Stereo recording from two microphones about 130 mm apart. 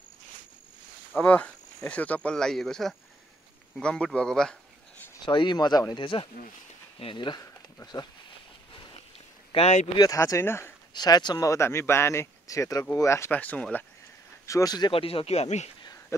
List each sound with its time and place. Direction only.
1.1 s speech: 10° left (ahead or behind)
5.2 s speech: 35° left (ahead or behind)
9.5 s speech: 55° left (ahead or behind)
9.9 s speech: 25° left (ahead or behind)
10.9 s speech: 35° left (ahead or behind); by 13.8 s 10° left (ahead or behind)
14.4 s speech: 25° left (ahead or behind)
14.9 s speech: 45° left (ahead or behind)
15.8 s a sound: 30° left (ahead or behind)